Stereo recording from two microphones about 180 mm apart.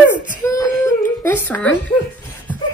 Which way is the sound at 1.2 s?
10° left (ahead or behind).